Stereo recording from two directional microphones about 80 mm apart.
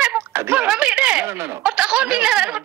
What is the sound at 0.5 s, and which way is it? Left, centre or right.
Speech, centre.